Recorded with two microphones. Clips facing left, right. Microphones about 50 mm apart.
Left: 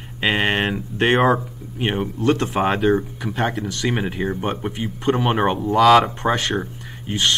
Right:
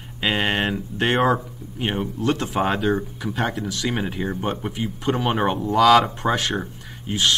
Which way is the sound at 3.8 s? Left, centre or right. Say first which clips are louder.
Left 3 dB; centre.